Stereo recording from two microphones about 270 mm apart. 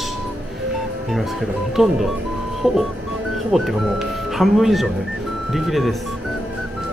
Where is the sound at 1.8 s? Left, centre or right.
Centre.